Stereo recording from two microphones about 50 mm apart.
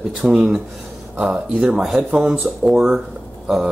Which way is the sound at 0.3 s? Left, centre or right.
Centre.